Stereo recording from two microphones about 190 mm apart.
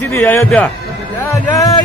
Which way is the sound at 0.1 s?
10° left (ahead or behind).